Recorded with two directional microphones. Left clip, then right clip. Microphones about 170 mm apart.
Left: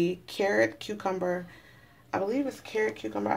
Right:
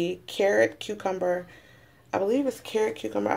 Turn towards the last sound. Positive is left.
turn(degrees=-20)  # may be behind; listen again after turning